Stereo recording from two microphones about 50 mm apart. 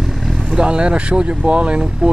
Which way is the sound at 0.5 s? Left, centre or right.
Centre.